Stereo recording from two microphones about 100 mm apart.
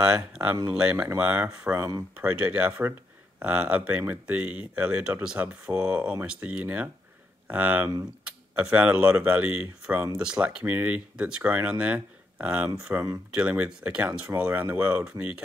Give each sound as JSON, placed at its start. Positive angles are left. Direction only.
{"t": 0.0, "sound": "speech", "side_deg": -10}